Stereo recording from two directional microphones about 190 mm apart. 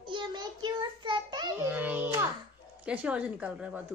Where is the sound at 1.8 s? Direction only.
10° right (ahead or behind).